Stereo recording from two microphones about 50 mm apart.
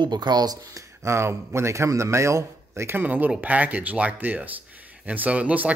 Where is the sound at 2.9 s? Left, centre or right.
Right.